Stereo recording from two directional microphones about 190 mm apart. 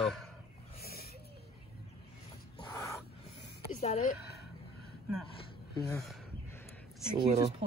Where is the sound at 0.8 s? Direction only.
55° left (ahead or behind).